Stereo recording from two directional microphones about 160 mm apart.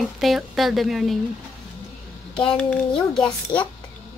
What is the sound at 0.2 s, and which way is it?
Speech, centre (ahead or behind).